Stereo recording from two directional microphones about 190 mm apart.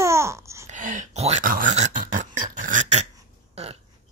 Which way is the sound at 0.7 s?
40° right (ahead or behind).